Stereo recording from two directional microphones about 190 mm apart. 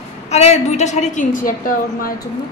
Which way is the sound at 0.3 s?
35° left (ahead or behind).